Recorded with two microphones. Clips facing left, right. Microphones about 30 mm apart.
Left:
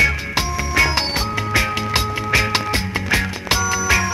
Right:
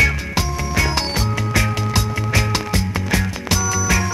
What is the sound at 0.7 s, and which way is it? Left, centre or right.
Music, left.